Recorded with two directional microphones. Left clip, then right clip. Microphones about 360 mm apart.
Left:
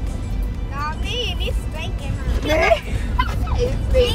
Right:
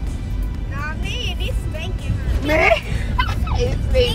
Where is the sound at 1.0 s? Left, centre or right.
Centre.